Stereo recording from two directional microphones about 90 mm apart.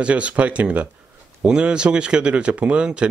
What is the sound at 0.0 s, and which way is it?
Speech, 15° right (ahead or behind).